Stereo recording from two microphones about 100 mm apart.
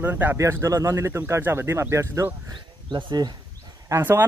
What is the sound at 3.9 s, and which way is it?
Speech, 20° right (ahead or behind).